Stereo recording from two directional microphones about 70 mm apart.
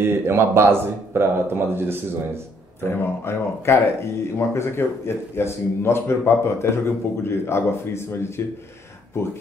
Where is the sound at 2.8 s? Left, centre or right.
Left.